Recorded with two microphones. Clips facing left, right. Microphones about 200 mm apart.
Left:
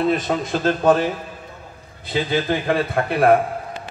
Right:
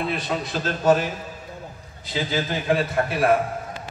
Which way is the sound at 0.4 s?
50° left (ahead or behind).